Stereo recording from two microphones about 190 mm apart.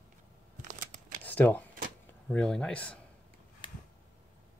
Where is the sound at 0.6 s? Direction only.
45° right (ahead or behind).